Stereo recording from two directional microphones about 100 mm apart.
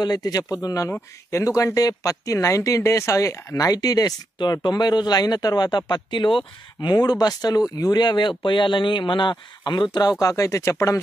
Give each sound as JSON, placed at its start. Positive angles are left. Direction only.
{"t": 0.0, "sound": "speech", "side_deg": 40}